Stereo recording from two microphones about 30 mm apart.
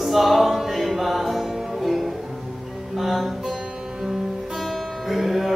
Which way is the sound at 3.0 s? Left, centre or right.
Centre.